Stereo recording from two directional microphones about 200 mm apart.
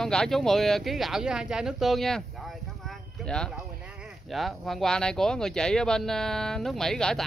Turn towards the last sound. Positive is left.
turn(degrees=5)  # may be behind; listen again after turning